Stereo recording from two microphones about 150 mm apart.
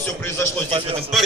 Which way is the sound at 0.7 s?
40° right (ahead or behind).